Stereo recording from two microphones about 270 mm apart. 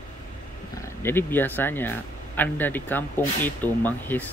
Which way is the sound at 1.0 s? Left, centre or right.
Centre.